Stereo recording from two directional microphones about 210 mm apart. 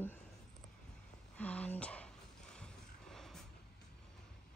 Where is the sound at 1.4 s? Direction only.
5° left (ahead or behind).